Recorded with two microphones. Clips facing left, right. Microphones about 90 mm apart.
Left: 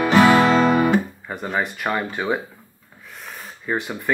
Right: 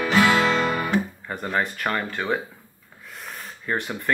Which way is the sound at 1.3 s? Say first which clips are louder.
Left 1 dB; 5° left (ahead or behind).